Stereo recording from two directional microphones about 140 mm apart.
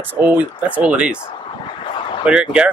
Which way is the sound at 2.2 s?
5° right (ahead or behind).